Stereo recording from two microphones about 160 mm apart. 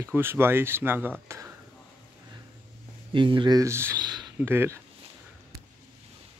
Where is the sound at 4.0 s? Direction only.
25° right (ahead or behind).